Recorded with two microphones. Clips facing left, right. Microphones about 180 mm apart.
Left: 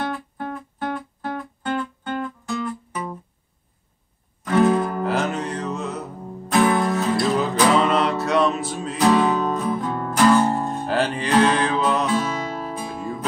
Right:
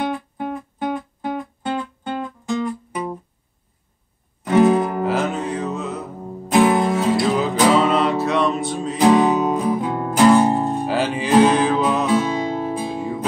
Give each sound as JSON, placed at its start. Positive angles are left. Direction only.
{"t": 0.0, "sound": "music", "side_deg": -15}
{"t": 4.5, "sound": "music", "side_deg": -20}
{"t": 5.0, "sound": "music", "side_deg": 0}
{"t": 6.2, "sound": "music", "side_deg": -20}
{"t": 7.7, "sound": "music", "side_deg": 0}
{"t": 9.0, "sound": "music", "side_deg": -15}
{"t": 12.1, "sound": "music", "side_deg": -20}